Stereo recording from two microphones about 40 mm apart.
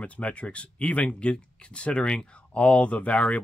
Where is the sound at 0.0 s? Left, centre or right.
Left.